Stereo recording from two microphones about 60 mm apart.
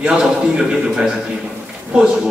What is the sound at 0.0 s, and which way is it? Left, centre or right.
A man's voice, centre.